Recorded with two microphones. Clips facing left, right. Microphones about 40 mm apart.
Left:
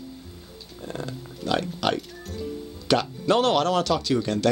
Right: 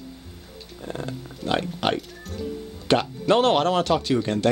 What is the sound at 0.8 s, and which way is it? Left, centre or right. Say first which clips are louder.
Speech: right 1 dB; centre.